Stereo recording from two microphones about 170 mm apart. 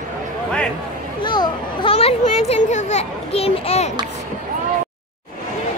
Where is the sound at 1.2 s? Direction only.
25° left (ahead or behind).